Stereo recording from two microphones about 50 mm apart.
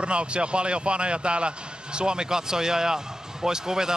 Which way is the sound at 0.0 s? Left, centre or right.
Right.